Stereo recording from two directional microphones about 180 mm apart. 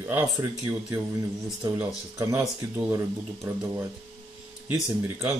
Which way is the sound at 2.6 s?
15° right (ahead or behind).